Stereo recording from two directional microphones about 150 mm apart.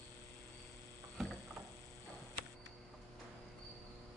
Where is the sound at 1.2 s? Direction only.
Centre (ahead or behind).